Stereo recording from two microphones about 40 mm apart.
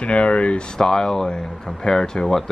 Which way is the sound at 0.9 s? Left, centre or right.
Centre.